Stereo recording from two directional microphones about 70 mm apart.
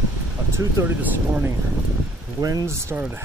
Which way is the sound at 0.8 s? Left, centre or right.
Right.